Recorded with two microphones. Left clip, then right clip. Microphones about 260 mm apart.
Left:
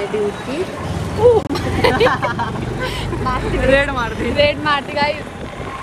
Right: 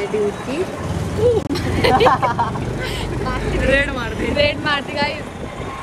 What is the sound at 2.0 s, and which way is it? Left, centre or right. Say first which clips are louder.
Speech: right 2 dB; right.